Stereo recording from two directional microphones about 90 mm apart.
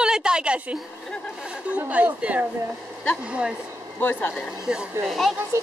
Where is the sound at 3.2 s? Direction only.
15° right (ahead or behind).